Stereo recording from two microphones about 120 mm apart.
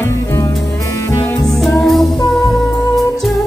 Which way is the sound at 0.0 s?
25° left (ahead or behind).